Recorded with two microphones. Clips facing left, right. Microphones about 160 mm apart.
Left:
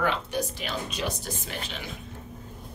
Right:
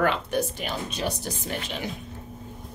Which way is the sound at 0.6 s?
50° right (ahead or behind).